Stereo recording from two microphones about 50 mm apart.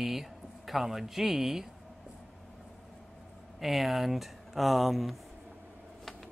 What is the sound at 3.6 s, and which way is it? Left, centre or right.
Speech, centre.